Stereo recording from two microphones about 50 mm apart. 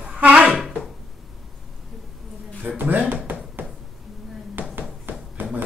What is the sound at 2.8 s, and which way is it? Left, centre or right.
Speech, right.